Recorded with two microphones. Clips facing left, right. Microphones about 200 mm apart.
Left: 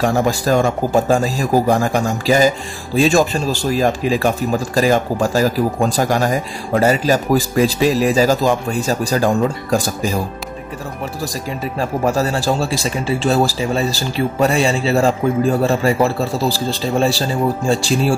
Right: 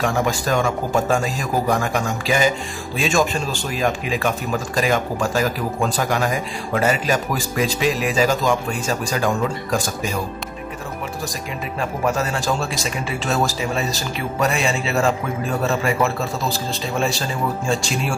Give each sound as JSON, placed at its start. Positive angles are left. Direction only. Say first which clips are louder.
{"t": 0.0, "sound": "speech", "louder": "left 4 dB", "side_deg": 35}
{"t": 11.8, "sound": "speech", "louder": "left 4 dB", "side_deg": 35}